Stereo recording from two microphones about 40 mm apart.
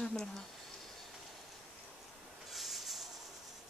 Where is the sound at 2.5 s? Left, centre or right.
Centre.